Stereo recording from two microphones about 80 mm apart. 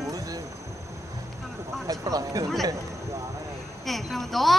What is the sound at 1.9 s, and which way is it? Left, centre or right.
Speech, right.